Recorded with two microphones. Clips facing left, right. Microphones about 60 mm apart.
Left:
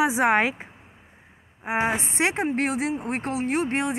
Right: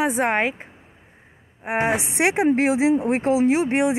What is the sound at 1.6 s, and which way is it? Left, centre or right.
Speech, centre.